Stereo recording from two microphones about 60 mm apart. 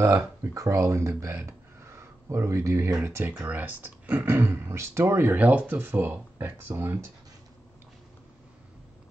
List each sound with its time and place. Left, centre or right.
0.1 s speech: right
3.0 s speech: right
3.4 s speech: right
4.3 s speech: right